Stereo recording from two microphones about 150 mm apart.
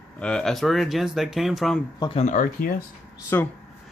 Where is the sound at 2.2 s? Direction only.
60° left (ahead or behind).